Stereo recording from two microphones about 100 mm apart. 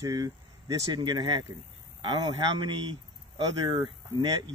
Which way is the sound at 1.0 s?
50° right (ahead or behind).